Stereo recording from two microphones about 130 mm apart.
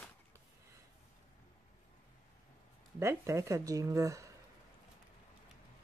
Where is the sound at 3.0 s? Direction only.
20° right (ahead or behind).